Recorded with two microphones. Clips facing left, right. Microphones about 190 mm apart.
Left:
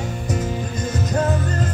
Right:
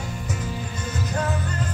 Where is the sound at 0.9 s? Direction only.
45° left (ahead or behind).